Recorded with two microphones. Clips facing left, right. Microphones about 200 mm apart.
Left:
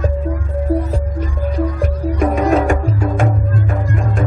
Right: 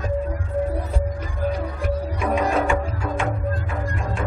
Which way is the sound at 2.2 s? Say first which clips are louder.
Left 7 dB; 45° left (ahead or behind).